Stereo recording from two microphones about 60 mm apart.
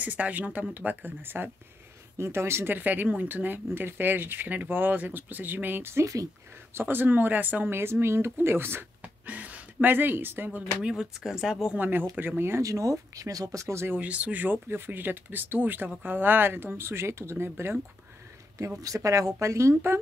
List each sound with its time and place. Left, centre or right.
0.0 s speech: right
2.1 s speech: right
2.7 s speech: right
7.7 s speech: right
9.0 s a sound: right
10.8 s speech: centre
11.8 s speech: right
12.6 s speech: right
14.0 s speech: right
18.8 s speech: right
19.4 s speech: right